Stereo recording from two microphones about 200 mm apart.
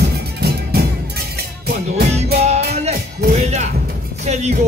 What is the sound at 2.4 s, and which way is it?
Music, 30° right (ahead or behind).